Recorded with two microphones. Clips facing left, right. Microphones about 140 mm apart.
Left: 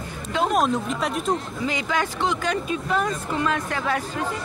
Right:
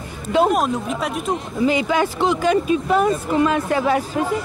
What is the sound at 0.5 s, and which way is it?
Speech, centre (ahead or behind).